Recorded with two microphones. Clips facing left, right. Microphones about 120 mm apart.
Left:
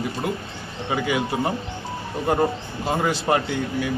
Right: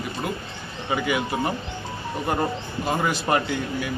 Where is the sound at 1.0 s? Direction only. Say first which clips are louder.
Left 2 dB; 25° left (ahead or behind).